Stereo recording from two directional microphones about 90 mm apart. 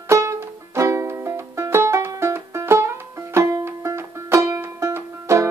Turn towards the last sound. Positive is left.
turn(degrees=-35)  # may be behind; listen again after turning